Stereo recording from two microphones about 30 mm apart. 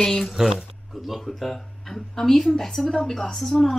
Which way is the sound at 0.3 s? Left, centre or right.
Centre.